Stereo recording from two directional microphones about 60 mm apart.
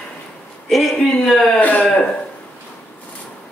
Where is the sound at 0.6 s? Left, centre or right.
Centre.